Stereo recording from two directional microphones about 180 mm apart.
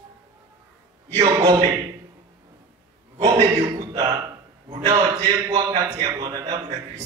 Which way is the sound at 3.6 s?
20° right (ahead or behind).